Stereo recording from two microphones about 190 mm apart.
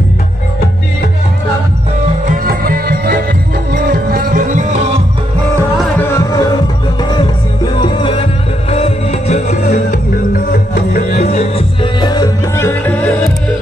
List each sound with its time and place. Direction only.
2.2 s music: 50° right (ahead or behind)
5.9 s music: 15° left (ahead or behind); by 9.8 s 35° left (ahead or behind)
9.8 s music: 45° left (ahead or behind); by 13.3 s 5° left (ahead or behind)